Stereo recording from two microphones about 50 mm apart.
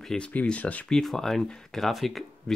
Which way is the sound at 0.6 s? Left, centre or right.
Left.